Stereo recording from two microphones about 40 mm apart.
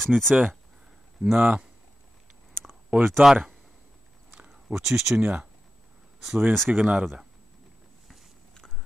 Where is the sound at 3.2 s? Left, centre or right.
Right.